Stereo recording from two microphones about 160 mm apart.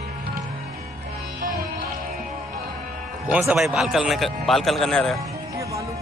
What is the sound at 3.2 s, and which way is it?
A man's voice, 10° right (ahead or behind).